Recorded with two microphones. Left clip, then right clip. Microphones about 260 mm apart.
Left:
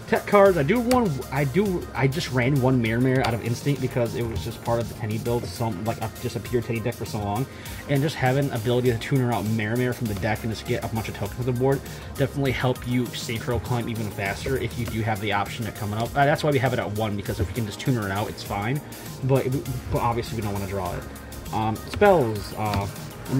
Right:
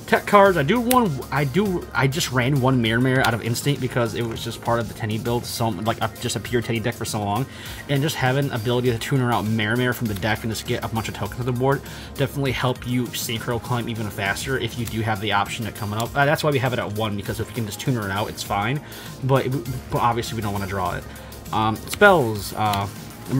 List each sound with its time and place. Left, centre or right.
0.1 s speech: centre
7.9 s speech: centre